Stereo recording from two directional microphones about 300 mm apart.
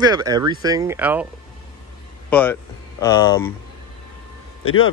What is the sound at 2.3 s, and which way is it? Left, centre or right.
Speech, centre.